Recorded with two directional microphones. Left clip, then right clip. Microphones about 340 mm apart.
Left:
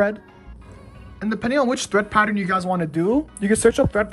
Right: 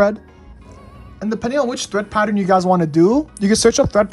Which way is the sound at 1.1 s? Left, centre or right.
Centre.